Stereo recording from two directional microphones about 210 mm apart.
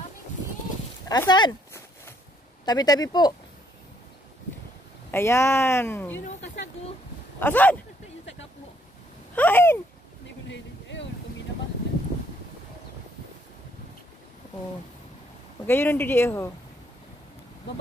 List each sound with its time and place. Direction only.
1.0 s a sound: 20° left (ahead or behind)
2.6 s speech: 20° left (ahead or behind)
5.1 s speech: 10° left (ahead or behind)
7.3 s speech: 10° left (ahead or behind)
9.3 s a sound: 10° left (ahead or behind)
10.5 s vehicle: 60° left (ahead or behind)
15.6 s speech: 10° left (ahead or behind)